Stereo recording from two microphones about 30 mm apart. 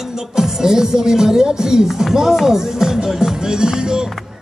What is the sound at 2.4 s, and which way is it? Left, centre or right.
Speech, centre.